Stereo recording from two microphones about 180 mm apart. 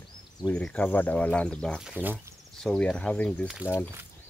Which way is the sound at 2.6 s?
5° left (ahead or behind).